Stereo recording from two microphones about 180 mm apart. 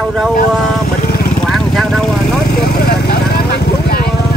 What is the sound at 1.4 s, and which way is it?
Vehicle, centre (ahead or behind).